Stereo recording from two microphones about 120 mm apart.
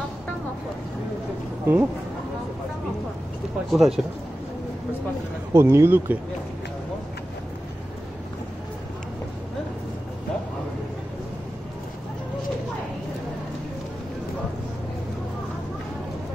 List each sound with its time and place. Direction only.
1.7 s speech: 15° right (ahead or behind)
3.7 s speech: centre (ahead or behind)
5.5 s speech: 20° right (ahead or behind)